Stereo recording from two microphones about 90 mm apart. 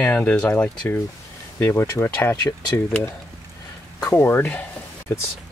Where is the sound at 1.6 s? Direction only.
30° left (ahead or behind).